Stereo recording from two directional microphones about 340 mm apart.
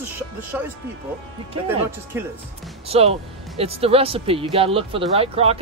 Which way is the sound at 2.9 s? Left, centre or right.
Centre.